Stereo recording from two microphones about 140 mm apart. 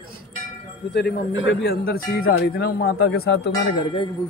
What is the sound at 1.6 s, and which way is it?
Speech, 90° left.